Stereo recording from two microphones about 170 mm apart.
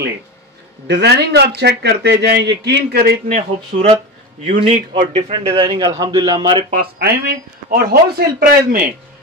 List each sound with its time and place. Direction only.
0.8 s speech: 85° right
3.3 s a man's voice: 40° right (ahead or behind); by 6.6 s 25° right (ahead or behind)
6.7 s speech: 60° right (ahead or behind)